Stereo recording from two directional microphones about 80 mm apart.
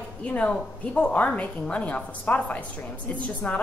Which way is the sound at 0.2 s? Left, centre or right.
Centre.